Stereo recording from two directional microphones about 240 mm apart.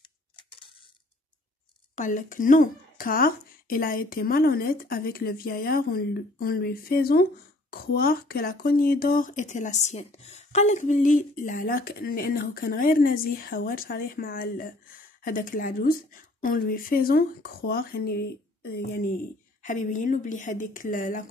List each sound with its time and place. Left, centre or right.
0.4 s a sound: left
2.0 s speech: left
19.6 s speech: left